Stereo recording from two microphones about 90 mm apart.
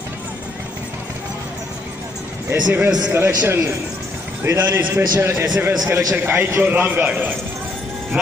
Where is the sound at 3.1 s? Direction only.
25° right (ahead or behind).